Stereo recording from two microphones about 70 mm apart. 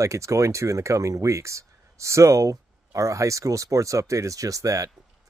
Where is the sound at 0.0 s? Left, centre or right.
Right.